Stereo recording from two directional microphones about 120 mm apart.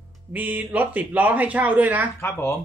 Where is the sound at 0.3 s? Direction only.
15° right (ahead or behind).